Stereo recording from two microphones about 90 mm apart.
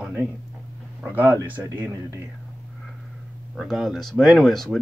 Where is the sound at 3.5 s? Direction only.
5° right (ahead or behind).